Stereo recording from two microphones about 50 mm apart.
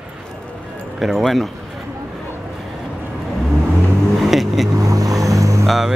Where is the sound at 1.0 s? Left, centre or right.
Centre.